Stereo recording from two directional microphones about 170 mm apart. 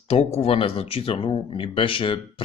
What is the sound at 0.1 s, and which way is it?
Speech, 35° left (ahead or behind).